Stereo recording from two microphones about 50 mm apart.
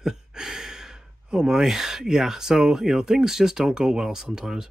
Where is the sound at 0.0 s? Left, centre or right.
Centre.